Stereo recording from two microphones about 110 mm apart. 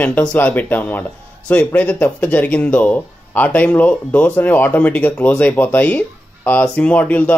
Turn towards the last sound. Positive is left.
turn(degrees=15)  # may be behind; listen again after turning